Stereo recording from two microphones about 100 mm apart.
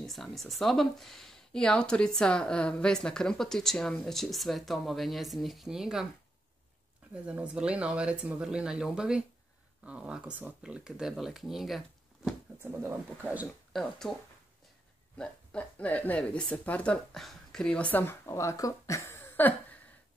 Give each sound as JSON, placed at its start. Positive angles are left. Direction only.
{"t": 0.0, "sound": "speech", "side_deg": 0}
{"t": 7.2, "sound": "speech", "side_deg": -10}
{"t": 12.6, "sound": "speech", "side_deg": -20}
{"t": 13.7, "sound": "speech", "side_deg": 5}
{"t": 15.1, "sound": "speech", "side_deg": 15}